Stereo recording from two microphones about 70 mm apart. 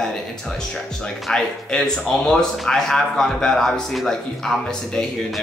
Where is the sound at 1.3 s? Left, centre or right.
Centre.